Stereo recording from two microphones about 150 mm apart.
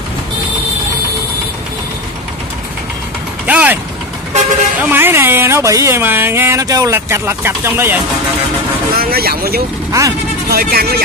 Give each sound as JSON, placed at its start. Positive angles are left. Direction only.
{"t": 3.4, "sound": "mechanisms", "side_deg": -10}
{"t": 4.8, "sound": "speech", "side_deg": -15}
{"t": 8.9, "sound": "speech", "side_deg": -90}
{"t": 9.8, "sound": "speech", "side_deg": -20}
{"t": 10.5, "sound": "speech", "side_deg": -90}